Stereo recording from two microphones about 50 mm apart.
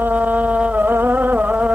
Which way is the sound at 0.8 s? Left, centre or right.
Right.